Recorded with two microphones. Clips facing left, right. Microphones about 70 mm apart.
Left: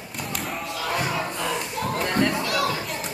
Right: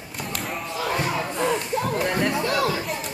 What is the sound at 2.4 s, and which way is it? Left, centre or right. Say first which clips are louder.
Chatter: right 2 dB; right.